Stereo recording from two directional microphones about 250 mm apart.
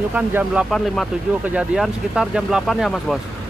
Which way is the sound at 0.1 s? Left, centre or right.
Centre.